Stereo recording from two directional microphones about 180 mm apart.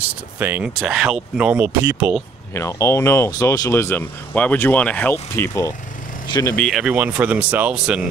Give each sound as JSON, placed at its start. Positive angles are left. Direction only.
{"t": 0.0, "sound": "speech", "side_deg": -10}
{"t": 2.5, "sound": "speech", "side_deg": 15}
{"t": 6.6, "sound": "speech", "side_deg": 0}